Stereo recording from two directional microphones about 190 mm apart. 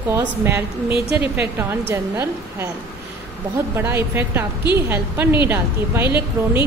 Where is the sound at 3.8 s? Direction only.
15° right (ahead or behind).